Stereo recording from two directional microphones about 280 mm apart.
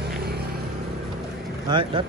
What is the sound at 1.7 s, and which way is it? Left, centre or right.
Speech, centre.